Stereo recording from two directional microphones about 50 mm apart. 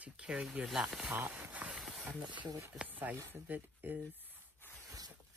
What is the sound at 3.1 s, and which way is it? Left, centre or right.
Speech, right.